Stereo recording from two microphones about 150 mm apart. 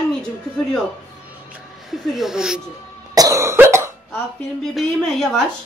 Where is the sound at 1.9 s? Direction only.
Centre (ahead or behind).